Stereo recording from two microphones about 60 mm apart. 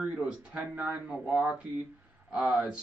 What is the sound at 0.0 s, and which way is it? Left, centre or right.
Speech, centre.